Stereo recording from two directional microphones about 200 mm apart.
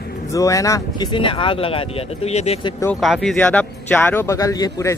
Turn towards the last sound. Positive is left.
turn(degrees=15)  # may be behind; listen again after turning